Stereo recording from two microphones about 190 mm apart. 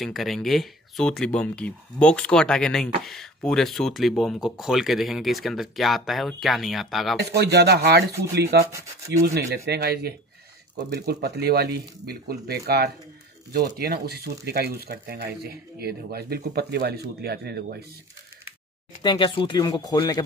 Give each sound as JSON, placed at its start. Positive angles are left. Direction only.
{"t": 0.0, "sound": "speech", "side_deg": 0}
{"t": 7.2, "sound": "speech", "side_deg": -60}
{"t": 19.0, "sound": "speech", "side_deg": 25}